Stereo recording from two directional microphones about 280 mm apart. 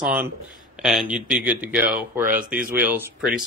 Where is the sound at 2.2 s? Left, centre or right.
Right.